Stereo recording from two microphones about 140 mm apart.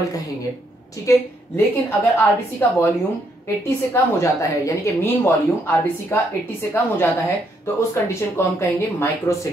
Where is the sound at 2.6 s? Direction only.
15° left (ahead or behind).